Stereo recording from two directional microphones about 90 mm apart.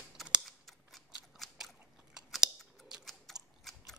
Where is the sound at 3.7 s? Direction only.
Centre (ahead or behind).